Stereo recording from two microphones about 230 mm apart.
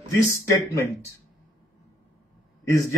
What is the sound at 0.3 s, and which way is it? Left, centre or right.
Speech, centre.